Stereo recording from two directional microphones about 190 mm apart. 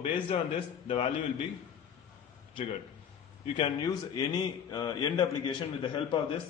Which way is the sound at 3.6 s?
20° left (ahead or behind).